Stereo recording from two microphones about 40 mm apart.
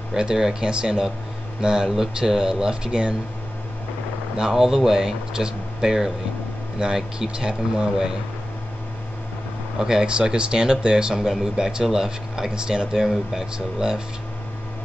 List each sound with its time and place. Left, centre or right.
0.1 s speech: centre
4.5 s speech: centre
9.8 s speech: centre
12.9 s speech: centre